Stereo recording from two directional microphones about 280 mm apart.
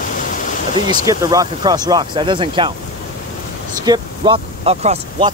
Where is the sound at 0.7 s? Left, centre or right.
Centre.